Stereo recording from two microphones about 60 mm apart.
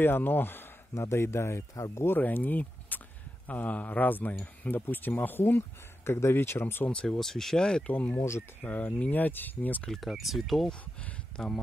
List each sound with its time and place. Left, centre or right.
0.0 s speech: left
0.9 s speech: left
2.0 s a man's voice: left
6.6 s speech: left
6.9 s speech: centre
7.2 s speech: centre
7.8 s a man's voice: left
9.8 s speech: centre
11.3 s speech: centre